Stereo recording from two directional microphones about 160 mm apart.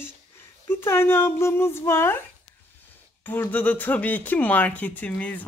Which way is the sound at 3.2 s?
10° left (ahead or behind).